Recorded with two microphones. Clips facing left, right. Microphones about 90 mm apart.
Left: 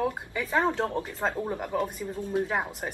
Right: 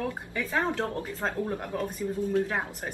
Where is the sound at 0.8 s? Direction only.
25° left (ahead or behind).